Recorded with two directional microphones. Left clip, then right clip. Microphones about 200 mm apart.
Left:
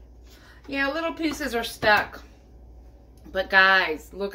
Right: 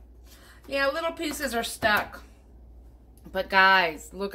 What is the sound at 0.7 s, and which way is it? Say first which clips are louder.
A woman's voice: even; 60° right (ahead or behind).